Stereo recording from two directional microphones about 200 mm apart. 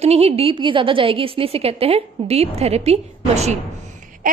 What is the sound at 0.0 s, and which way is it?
A woman's voice, 30° right (ahead or behind).